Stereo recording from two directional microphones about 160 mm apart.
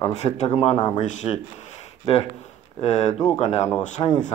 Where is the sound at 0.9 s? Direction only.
45° left (ahead or behind).